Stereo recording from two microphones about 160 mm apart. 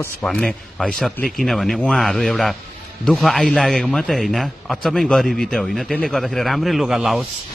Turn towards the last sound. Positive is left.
turn(degrees=-5)  # may be behind; listen again after turning